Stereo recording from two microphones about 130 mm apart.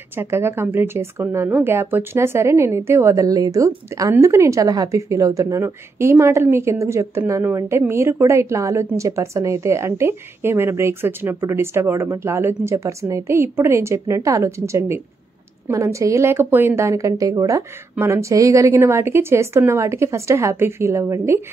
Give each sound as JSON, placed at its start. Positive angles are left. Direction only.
{"t": 0.1, "sound": "speech", "side_deg": -20}